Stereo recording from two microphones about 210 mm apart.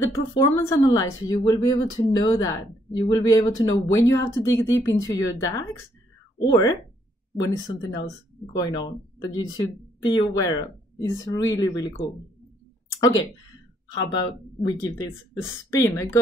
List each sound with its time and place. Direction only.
0.0 s a woman's voice: 15° left (ahead or behind)
14.2 s a woman's voice: 20° left (ahead or behind)